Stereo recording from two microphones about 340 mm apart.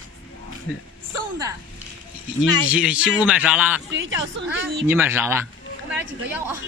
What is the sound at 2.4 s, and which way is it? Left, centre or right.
Speech, centre.